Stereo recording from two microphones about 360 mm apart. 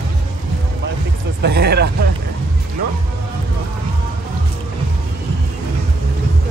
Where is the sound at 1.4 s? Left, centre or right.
Right.